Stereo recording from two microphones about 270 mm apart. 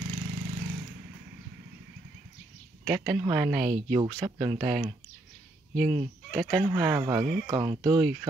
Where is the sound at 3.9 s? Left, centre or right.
Centre.